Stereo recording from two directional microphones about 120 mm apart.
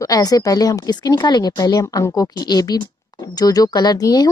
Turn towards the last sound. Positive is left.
turn(degrees=35)  # may be behind; listen again after turning